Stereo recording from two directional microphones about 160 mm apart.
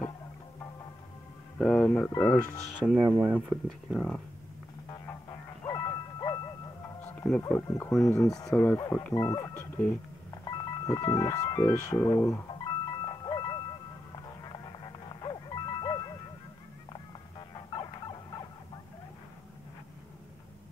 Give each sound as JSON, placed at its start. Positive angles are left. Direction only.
{"t": 1.6, "sound": "speech", "side_deg": 5}
{"t": 2.9, "sound": "speech", "side_deg": -10}
{"t": 4.9, "sound": "music", "side_deg": 25}
{"t": 7.2, "sound": "speech", "side_deg": 10}
{"t": 10.4, "sound": "music", "side_deg": 25}